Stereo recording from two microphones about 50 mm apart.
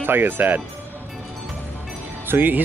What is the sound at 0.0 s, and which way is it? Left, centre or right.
Speech, right.